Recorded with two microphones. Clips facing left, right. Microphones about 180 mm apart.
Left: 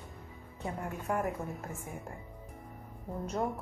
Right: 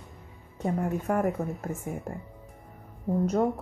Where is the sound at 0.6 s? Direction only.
50° right (ahead or behind).